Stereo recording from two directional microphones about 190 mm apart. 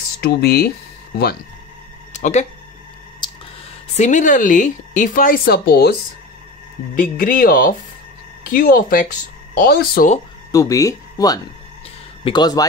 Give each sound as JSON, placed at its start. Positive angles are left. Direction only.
{"t": 0.2, "sound": "speech", "side_deg": 55}
{"t": 2.1, "sound": "a sound", "side_deg": 40}
{"t": 3.2, "sound": "a sound", "side_deg": 25}
{"t": 3.9, "sound": "speech", "side_deg": 40}
{"t": 7.0, "sound": "speech", "side_deg": 45}
{"t": 10.5, "sound": "speech", "side_deg": 15}